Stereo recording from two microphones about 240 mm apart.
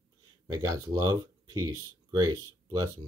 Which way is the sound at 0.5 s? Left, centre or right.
Centre.